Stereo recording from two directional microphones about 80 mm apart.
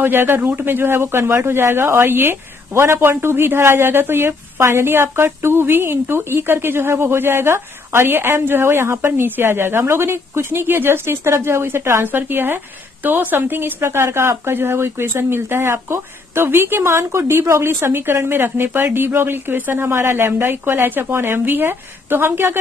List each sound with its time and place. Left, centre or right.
0.0 s speech: right